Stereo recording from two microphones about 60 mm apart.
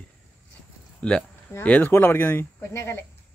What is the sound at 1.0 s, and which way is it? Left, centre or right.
Speech, centre.